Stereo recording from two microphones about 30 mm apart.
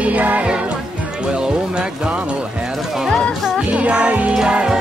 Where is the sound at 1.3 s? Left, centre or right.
Right.